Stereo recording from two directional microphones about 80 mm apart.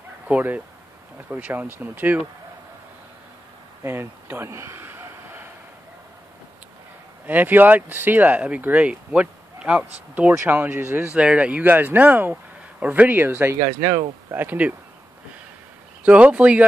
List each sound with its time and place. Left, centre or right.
0.3 s speech: right
3.8 s a sound: right
7.2 s speech: right
11.1 s speech: centre
13.6 s speech: right
14.4 s speech: right
16.1 s speech: centre